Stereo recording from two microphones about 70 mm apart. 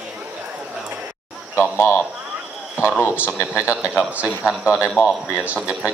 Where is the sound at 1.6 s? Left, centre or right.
Left.